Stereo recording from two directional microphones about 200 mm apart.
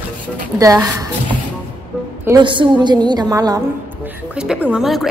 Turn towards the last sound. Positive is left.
turn(degrees=0)  # may be behind; listen again after turning